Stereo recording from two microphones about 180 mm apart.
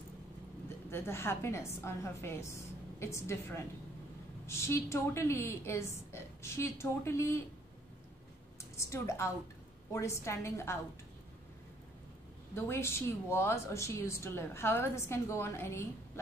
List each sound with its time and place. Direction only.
0.8 s speech: 15° left (ahead or behind)
8.7 s speech: 15° left (ahead or behind)
12.5 s speech: 15° left (ahead or behind)